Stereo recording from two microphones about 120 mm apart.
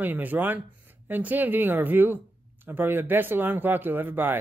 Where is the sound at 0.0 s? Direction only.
15° right (ahead or behind).